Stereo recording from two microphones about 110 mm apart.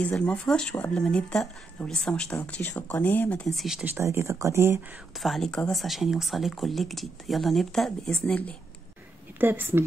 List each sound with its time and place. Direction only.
0.0 s speech: 10° left (ahead or behind)
2.9 s speech: 15° left (ahead or behind)
3.4 s speech: centre (ahead or behind)
3.8 s speech: 25° right (ahead or behind)
5.2 s speech: centre (ahead or behind)
9.4 s a woman's voice: 20° right (ahead or behind)